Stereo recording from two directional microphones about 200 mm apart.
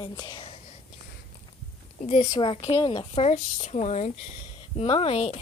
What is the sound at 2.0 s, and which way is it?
A woman's voice, 35° left (ahead or behind).